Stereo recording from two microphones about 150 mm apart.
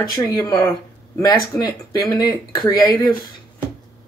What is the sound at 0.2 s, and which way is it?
Speech, 25° left (ahead or behind).